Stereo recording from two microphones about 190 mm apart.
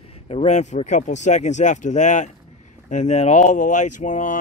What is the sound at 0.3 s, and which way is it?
Speech, 35° left (ahead or behind).